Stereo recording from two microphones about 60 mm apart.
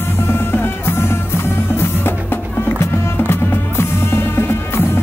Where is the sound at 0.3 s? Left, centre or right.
Left.